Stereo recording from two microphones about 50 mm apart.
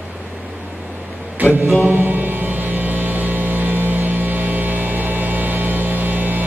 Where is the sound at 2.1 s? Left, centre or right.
Right.